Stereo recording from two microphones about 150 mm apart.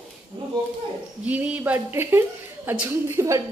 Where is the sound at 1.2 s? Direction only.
10° right (ahead or behind).